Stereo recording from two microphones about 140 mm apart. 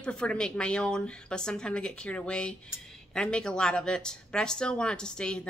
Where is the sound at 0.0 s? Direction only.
5° left (ahead or behind).